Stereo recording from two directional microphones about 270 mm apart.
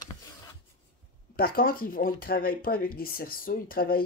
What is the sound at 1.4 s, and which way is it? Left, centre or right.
Speech, left.